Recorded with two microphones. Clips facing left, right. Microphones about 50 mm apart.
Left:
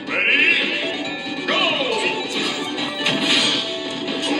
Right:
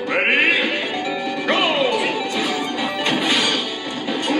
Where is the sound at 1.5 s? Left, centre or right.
Right.